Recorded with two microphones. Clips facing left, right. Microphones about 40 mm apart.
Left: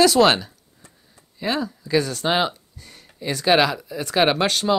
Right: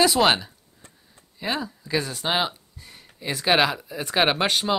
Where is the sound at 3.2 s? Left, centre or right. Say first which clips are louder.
Left 3 dB; centre.